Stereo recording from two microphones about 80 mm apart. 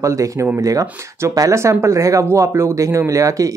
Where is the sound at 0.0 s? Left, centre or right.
Right.